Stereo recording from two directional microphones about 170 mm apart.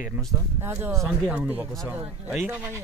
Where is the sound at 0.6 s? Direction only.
15° right (ahead or behind).